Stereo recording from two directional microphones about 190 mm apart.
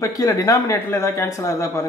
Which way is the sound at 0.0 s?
15° left (ahead or behind).